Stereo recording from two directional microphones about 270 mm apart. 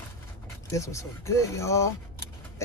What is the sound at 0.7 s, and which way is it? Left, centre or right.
Speech, centre.